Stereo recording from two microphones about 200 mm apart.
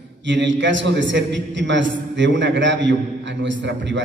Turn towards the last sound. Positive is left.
turn(degrees=-65)  # may be behind; listen again after turning